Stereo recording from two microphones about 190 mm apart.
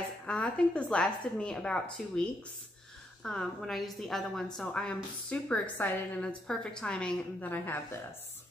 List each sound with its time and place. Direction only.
0.3 s a woman's voice: 5° left (ahead or behind)
3.3 s a woman's voice: 5° left (ahead or behind)